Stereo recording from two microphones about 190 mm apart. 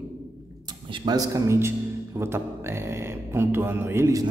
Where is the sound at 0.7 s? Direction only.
25° right (ahead or behind).